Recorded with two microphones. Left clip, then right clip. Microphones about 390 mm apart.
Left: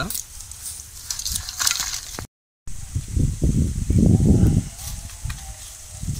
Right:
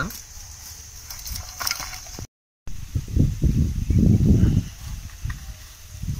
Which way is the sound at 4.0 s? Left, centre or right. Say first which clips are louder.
Left 2 dB; left.